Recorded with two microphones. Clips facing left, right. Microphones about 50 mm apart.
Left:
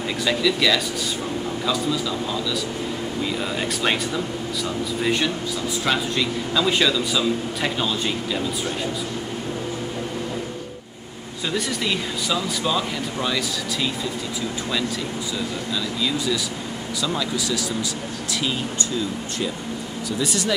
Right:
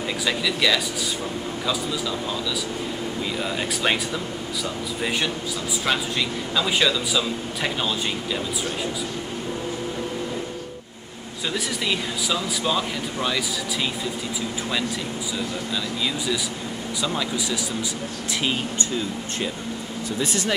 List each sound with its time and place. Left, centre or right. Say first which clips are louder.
0.2 s a man's voice: left 3 dB; centre
3.3 s a man's voice: left 1 dB; centre
5.0 s a man's voice: left 2 dB; centre
11.4 s a man's voice: left 2 dB; centre
15.3 s speech: even; centre
20.2 s speech: left 1 dB; right